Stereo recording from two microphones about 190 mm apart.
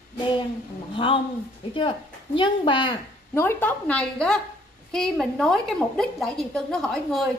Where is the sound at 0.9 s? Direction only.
25° left (ahead or behind).